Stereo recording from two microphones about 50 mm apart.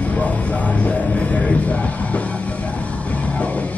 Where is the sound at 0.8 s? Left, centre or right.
Left.